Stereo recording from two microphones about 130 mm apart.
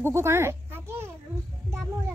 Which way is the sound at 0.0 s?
20° right (ahead or behind).